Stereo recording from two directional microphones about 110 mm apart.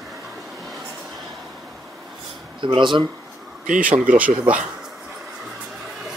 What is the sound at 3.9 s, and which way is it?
Speech, 10° right (ahead or behind).